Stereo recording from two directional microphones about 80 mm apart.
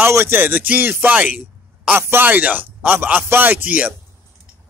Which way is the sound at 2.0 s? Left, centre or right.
Right.